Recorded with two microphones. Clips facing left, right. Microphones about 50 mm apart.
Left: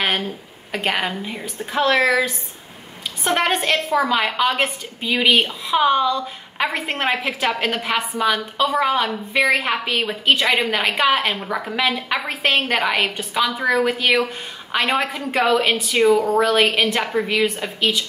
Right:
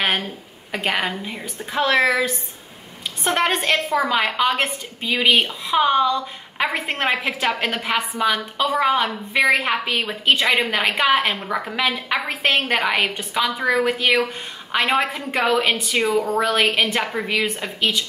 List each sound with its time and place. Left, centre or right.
0.8 s a woman's voice: centre
17.0 s a woman's voice: centre
17.6 s a woman's voice: centre